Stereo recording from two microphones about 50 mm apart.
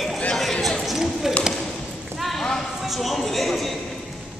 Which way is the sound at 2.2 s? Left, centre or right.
Centre.